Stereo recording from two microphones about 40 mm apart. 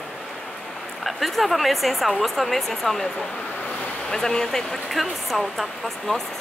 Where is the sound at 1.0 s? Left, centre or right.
Centre.